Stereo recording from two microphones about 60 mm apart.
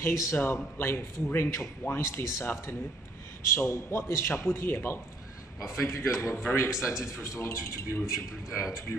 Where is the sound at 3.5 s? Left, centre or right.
Left.